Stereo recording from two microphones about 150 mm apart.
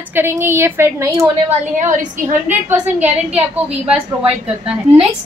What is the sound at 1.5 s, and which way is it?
A woman's voice, 55° right (ahead or behind).